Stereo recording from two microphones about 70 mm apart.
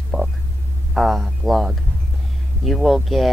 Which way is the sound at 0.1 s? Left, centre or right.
Right.